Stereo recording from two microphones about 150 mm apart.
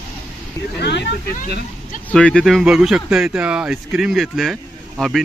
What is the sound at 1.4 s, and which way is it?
Speech, 65° left (ahead or behind).